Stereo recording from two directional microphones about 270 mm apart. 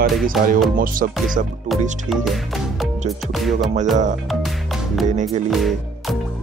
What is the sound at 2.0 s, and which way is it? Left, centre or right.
Music, centre.